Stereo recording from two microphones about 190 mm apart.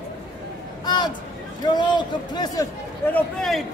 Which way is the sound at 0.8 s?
20° left (ahead or behind).